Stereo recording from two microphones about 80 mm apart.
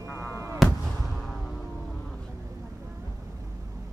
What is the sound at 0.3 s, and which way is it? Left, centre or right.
Fireworks, right.